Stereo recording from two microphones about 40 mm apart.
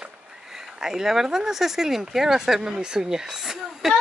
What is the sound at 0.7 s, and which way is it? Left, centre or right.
Speech, centre.